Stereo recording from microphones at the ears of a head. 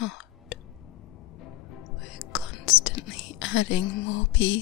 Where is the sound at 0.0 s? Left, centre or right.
Left.